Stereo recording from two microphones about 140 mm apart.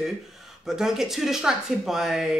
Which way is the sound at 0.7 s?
5° right (ahead or behind).